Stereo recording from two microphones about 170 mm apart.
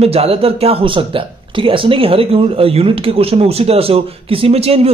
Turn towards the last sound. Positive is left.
turn(degrees=-35)  # may be behind; listen again after turning